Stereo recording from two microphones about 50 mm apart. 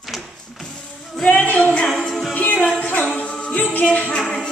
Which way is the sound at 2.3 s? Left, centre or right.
Left.